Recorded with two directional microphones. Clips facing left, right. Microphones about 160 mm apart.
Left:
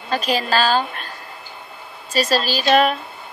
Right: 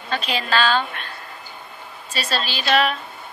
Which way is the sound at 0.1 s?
40° left (ahead or behind).